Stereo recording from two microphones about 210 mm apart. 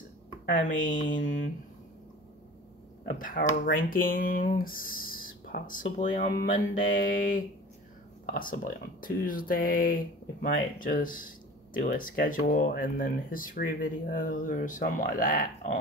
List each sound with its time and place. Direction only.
0.5 s speech: 40° left (ahead or behind)
3.1 s speech: 40° left (ahead or behind)